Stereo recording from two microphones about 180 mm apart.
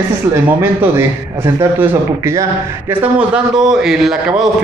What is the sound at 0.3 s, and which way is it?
Speech, 15° right (ahead or behind).